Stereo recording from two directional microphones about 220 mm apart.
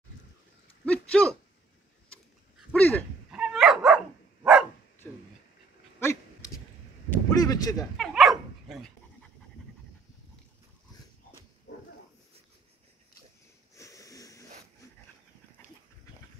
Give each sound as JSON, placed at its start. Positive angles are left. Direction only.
{"t": 0.8, "sound": "speech", "side_deg": 5}
{"t": 2.0, "sound": "a sound", "side_deg": 5}
{"t": 3.3, "sound": "dog", "side_deg": -5}
{"t": 5.9, "sound": "dog", "side_deg": 10}
{"t": 7.1, "sound": "a sound", "side_deg": 15}
{"t": 8.0, "sound": "dog", "side_deg": 0}
{"t": 13.7, "sound": "sniff", "side_deg": 15}